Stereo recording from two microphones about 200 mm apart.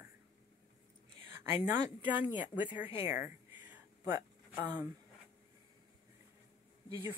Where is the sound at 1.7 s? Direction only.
10° right (ahead or behind).